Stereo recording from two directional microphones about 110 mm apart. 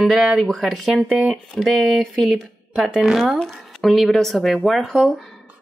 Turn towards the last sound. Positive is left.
turn(degrees=0)  # may be behind; listen again after turning